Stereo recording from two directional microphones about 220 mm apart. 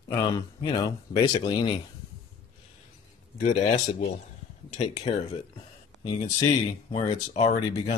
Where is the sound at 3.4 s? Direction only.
30° left (ahead or behind).